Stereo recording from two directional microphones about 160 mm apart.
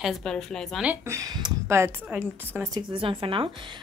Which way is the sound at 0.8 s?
15° right (ahead or behind).